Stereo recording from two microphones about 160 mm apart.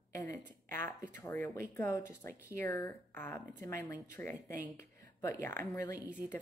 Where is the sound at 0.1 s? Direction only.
20° left (ahead or behind).